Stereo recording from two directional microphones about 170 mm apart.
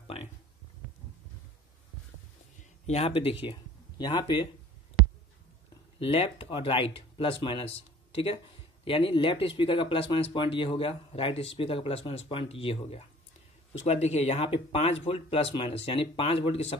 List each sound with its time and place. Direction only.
2.9 s speech: 35° left (ahead or behind)
5.9 s speech: 35° left (ahead or behind)